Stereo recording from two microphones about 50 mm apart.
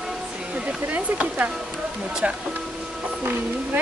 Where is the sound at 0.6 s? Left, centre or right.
Right.